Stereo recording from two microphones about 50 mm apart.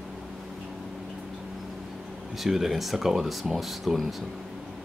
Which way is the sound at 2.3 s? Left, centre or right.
Centre.